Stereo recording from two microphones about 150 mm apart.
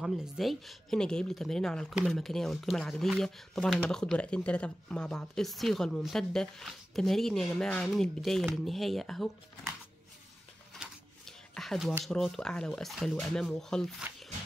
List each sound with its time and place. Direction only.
0.0 s speech: centre (ahead or behind)
10.7 s a sound: 5° left (ahead or behind)
12.0 s speech: centre (ahead or behind)